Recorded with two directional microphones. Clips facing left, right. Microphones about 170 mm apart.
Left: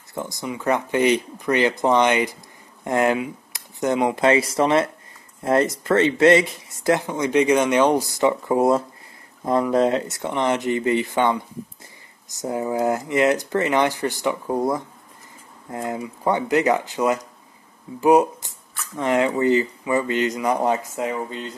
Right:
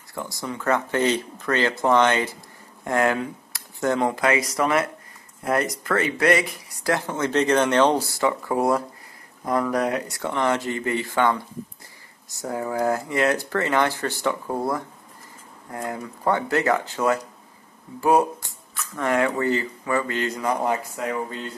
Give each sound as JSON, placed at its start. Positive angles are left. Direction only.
{"t": 0.1, "sound": "speech", "side_deg": 20}